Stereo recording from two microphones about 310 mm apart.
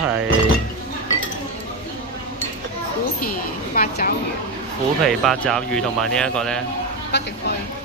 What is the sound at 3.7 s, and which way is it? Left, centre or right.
Speech, left.